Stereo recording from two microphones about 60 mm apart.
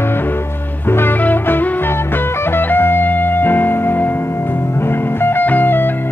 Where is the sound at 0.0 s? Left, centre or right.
Left.